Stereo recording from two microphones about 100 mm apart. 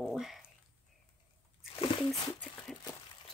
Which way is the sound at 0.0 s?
Centre (ahead or behind).